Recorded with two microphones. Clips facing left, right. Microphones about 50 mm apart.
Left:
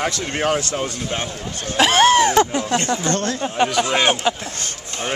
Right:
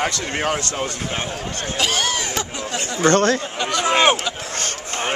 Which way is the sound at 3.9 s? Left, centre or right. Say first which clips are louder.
Right 2 dB; right.